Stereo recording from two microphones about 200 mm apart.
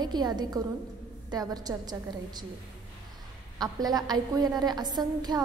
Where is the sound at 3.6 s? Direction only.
20° right (ahead or behind).